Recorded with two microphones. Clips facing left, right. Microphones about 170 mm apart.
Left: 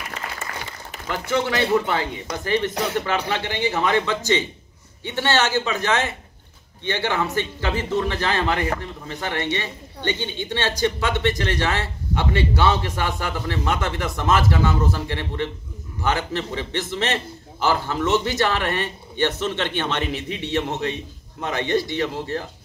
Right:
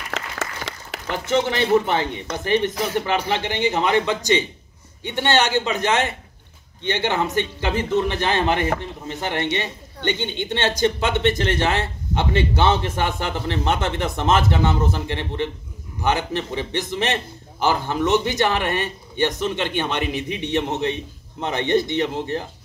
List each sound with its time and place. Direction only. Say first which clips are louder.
0.1 s applause: right 3 dB; 80° right
1.2 s a man's voice: right 1 dB; 20° right (ahead or behind)